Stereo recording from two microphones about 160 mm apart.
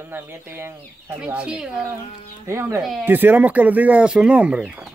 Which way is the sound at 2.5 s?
15° right (ahead or behind).